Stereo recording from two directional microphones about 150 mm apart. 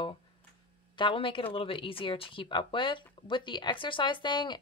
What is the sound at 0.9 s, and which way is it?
Speech, 35° left (ahead or behind).